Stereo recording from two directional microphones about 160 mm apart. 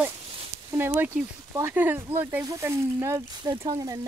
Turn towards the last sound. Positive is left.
turn(degrees=-20)  # may be behind; listen again after turning